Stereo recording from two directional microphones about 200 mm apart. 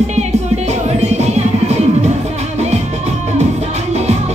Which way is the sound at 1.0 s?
35° right (ahead or behind).